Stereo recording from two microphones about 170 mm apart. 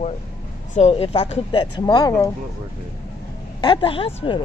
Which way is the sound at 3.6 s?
30° left (ahead or behind).